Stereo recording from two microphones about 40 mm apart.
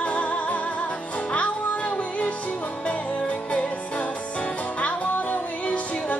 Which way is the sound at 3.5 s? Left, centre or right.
Left.